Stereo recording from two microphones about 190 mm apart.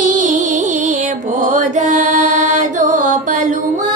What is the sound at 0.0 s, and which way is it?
Music, 45° right (ahead or behind).